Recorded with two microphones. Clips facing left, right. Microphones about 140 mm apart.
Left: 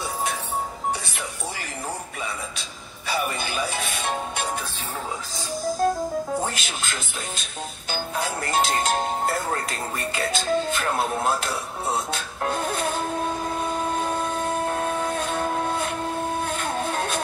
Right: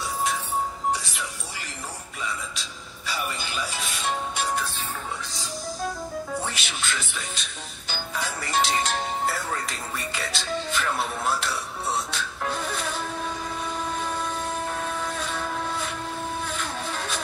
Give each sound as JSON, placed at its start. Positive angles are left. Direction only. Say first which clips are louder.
{"t": 3.1, "sound": "music", "louder": "left 5 dB", "side_deg": 55}
{"t": 5.7, "sound": "music", "louder": "left 9 dB", "side_deg": 50}
{"t": 7.9, "sound": "music", "louder": "left 4 dB", "side_deg": 50}
{"t": 16.3, "sound": "vehicle", "louder": "left 5 dB", "side_deg": 55}